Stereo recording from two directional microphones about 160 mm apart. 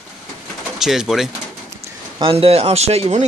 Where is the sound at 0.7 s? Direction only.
Centre (ahead or behind).